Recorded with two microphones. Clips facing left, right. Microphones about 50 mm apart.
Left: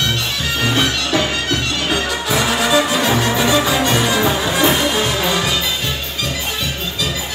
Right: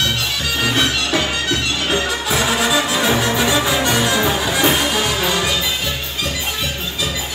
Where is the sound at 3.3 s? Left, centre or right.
Centre.